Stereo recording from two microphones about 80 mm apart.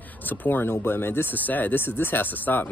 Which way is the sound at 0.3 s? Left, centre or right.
Left.